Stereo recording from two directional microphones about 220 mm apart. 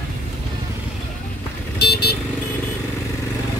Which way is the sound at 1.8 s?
45° left (ahead or behind).